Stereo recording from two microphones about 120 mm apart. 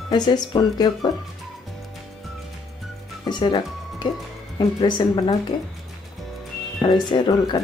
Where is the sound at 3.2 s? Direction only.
40° left (ahead or behind).